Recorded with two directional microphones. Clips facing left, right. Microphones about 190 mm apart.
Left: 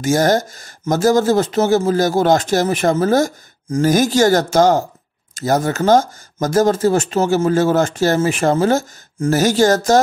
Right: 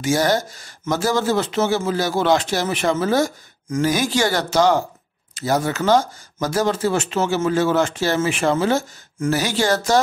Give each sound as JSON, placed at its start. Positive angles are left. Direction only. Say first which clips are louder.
{"t": 0.0, "sound": "speech", "louder": "left 4 dB", "side_deg": 45}